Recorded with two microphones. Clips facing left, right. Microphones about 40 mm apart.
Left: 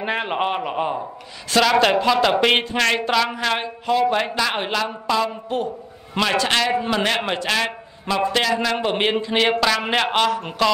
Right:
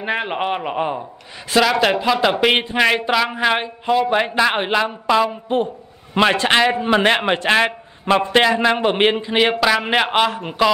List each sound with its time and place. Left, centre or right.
0.0 s a man's voice: centre